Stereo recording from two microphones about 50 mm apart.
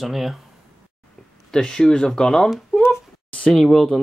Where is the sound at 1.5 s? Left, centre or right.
Centre.